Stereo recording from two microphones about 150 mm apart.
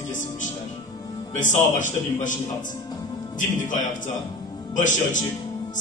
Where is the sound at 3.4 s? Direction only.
60° left (ahead or behind).